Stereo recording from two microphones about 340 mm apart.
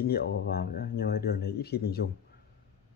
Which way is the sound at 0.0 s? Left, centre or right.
Left.